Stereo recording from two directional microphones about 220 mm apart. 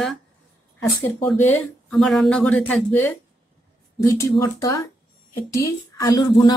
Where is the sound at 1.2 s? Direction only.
5° left (ahead or behind).